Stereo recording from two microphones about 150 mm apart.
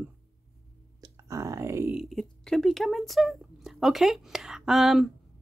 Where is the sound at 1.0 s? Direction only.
20° right (ahead or behind).